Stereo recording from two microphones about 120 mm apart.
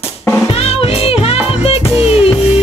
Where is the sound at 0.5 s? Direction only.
55° left (ahead or behind).